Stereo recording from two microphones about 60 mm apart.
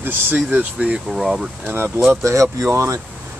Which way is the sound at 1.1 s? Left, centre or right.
Centre.